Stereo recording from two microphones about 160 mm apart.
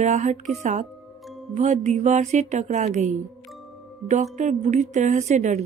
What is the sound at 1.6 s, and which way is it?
A woman's voice, 50° right (ahead or behind).